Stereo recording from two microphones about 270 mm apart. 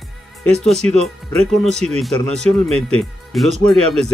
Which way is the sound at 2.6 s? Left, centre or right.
Right.